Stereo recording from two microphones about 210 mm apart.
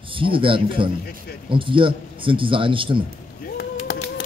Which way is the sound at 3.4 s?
45° left (ahead or behind).